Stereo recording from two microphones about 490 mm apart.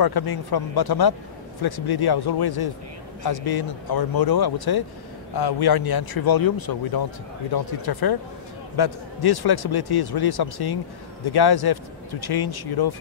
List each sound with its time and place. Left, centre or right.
0.0 s speech: left